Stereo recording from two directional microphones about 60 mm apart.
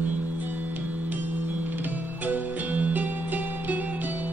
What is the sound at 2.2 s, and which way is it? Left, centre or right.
Music, right.